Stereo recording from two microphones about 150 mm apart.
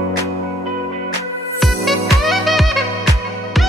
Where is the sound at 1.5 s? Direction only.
Centre (ahead or behind).